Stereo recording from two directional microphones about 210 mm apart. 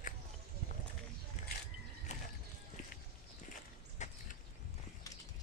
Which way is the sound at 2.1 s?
35° left (ahead or behind).